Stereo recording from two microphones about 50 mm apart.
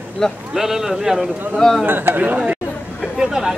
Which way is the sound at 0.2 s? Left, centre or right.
Centre.